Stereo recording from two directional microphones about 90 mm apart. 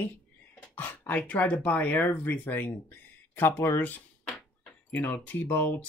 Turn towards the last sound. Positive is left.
turn(degrees=20)  # may be behind; listen again after turning